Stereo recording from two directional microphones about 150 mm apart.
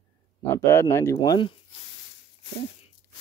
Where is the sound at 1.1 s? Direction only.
30° left (ahead or behind).